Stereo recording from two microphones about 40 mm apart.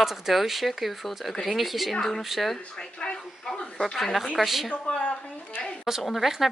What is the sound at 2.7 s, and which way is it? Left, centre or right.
Speech, left.